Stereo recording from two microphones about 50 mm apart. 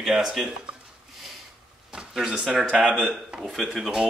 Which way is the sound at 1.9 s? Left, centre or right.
Centre.